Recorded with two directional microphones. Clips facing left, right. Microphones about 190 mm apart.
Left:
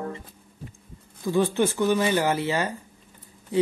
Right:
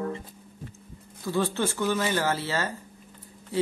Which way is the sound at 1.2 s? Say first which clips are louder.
Left 5 dB; 15° left (ahead or behind).